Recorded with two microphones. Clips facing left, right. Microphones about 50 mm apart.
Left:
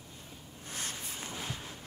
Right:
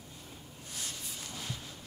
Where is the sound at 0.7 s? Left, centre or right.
Left.